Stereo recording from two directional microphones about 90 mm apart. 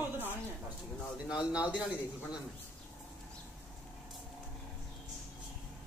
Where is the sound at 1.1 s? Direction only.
10° right (ahead or behind).